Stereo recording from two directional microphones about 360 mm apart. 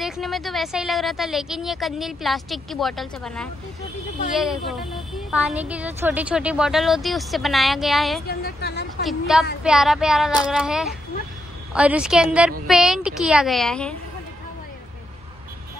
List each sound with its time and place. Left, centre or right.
0.0 s speech: centre
8.3 s a woman's voice: left
9.0 s speech: centre